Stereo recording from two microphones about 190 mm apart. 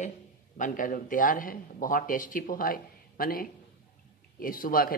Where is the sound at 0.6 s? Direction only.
45° left (ahead or behind).